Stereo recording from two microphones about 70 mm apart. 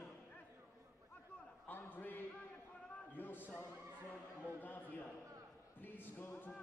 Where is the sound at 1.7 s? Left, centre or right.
Left.